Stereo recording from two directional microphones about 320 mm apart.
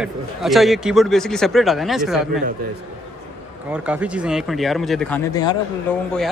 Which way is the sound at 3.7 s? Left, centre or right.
Centre.